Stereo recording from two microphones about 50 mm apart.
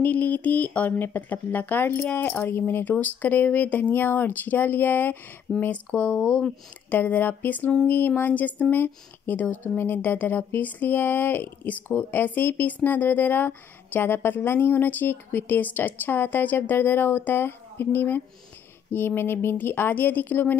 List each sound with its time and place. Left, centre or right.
0.0 s speech: left
5.9 s speech: left
6.9 s speech: left